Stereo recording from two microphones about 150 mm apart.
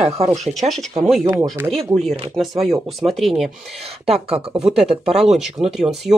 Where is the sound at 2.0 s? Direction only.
Centre (ahead or behind).